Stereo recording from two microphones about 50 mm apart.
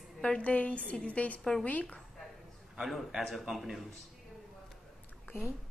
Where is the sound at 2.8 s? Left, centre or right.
Centre.